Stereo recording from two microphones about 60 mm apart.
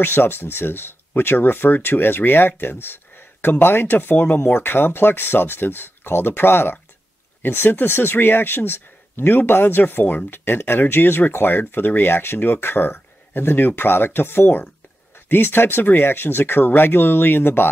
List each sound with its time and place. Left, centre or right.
0.0 s speech: left